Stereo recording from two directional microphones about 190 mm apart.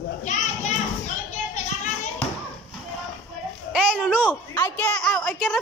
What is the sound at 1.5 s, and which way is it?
Children playing, 40° left (ahead or behind).